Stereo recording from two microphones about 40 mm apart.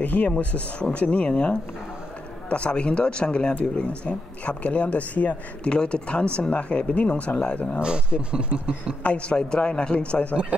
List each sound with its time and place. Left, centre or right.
0.0 s speech: left
5.7 s speech: left
7.8 s speech: right
9.0 s speech: left